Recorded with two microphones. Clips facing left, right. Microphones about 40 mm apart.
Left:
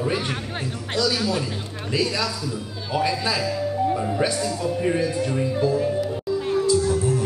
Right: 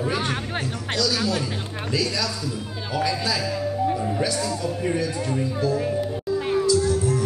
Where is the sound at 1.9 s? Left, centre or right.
Left.